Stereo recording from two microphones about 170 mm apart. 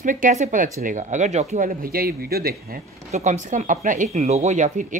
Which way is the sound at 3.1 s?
45° right (ahead or behind).